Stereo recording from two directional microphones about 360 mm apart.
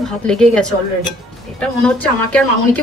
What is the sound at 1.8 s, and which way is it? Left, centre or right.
Speech, centre.